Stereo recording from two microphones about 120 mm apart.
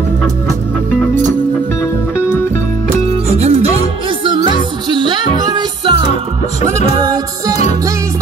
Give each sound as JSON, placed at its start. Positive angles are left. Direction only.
{"t": 3.3, "sound": "music", "side_deg": -65}
{"t": 4.2, "sound": "music", "side_deg": -40}
{"t": 7.0, "sound": "music", "side_deg": -30}